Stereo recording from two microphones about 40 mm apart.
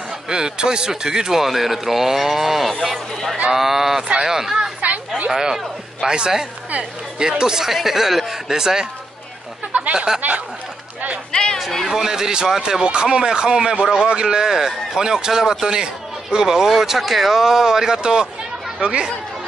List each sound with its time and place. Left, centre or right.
0.3 s speech: centre
9.7 s a sound: right
9.9 s speech: centre
11.9 s speech: centre
12.8 s speech: right